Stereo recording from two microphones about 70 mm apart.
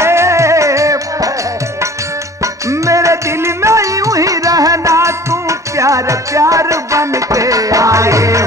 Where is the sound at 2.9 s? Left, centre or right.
Right.